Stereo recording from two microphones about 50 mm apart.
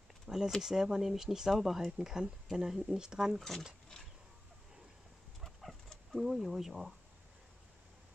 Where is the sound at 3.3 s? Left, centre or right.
Centre.